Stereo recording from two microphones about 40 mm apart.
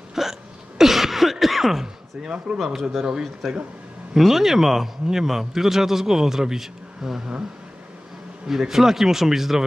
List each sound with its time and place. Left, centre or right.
0.1 s hiccup: centre
2.2 s speech: right
2.6 s speech: centre
4.3 s a man's voice: centre
8.5 s a man's voice: centre